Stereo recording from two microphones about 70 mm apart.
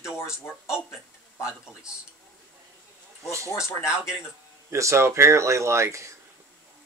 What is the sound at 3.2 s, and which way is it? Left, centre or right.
Speech, right.